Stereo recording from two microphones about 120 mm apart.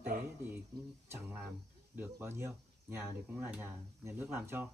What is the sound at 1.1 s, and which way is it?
Speech, 20° right (ahead or behind).